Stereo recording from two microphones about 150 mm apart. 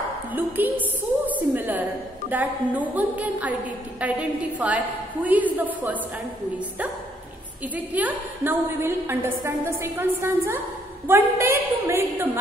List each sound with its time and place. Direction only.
0.3 s a woman's voice: 10° right (ahead or behind)
7.7 s a woman's voice: 10° right (ahead or behind)